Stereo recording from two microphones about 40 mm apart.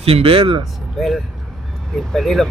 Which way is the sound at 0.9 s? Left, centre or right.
Centre.